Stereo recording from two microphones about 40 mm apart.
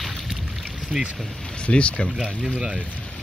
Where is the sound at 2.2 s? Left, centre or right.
Right.